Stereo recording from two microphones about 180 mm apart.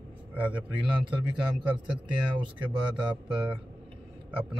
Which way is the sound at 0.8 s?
25° right (ahead or behind).